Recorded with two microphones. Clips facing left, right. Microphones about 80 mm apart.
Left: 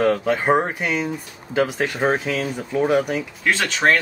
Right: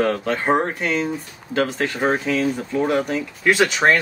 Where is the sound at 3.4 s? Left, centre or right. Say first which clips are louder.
Right 4 dB; centre.